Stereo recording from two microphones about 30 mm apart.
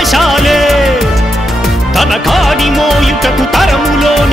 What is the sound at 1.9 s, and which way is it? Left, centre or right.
Music, centre.